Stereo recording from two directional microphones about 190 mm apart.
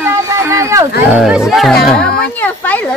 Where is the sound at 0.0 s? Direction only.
15° right (ahead or behind).